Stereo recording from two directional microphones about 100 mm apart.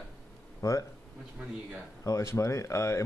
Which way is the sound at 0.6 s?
30° left (ahead or behind).